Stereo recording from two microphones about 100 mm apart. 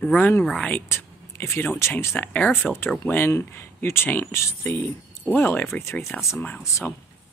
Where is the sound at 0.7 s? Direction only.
25° left (ahead or behind).